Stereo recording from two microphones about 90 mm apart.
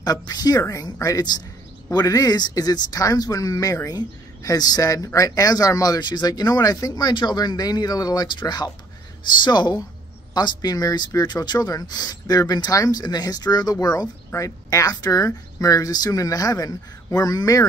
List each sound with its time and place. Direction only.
0.0 s speech: 45° left (ahead or behind)